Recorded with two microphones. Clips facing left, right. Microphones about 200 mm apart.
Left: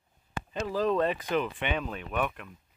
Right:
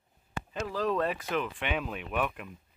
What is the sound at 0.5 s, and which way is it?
Speech, centre (ahead or behind).